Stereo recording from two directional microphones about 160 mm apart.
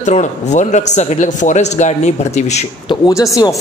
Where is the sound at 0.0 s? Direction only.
50° left (ahead or behind).